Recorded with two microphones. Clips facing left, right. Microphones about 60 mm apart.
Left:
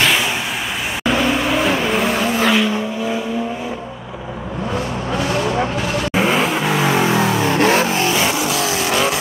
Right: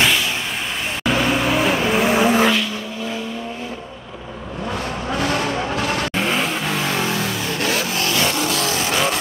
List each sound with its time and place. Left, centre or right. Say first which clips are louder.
1.0 s vehicle: left 1 dB; centre
2.1 s vehicle: right 3 dB; centre
2.5 s vehicle: left 6 dB; centre
6.1 s vehicle: left 4 dB; centre; by 7.4 s left
7.4 s vehicle: left 7 dB; left; by 9.2 s centre